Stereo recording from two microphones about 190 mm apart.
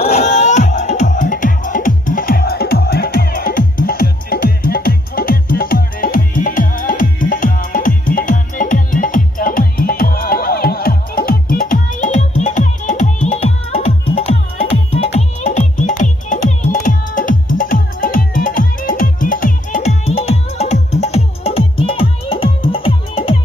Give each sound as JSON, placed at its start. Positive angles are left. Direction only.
{"t": 0.0, "sound": "music", "side_deg": 35}